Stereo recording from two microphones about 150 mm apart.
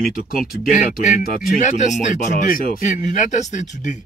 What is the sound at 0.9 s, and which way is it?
Speech, 55° left (ahead or behind).